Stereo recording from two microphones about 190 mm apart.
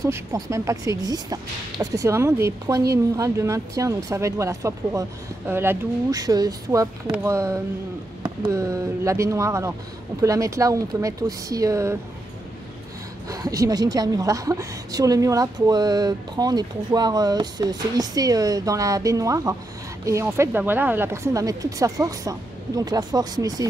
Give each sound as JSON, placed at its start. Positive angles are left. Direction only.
{"t": 0.0, "sound": "speech", "side_deg": -15}
{"t": 13.3, "sound": "a woman's voice", "side_deg": -15}